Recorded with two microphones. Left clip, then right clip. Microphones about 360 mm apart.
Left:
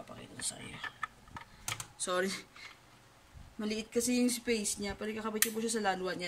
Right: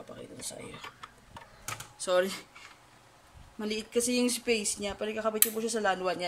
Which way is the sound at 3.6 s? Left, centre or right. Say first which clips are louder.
Right 4 dB; centre.